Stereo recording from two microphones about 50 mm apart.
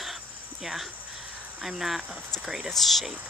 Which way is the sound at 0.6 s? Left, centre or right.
Centre.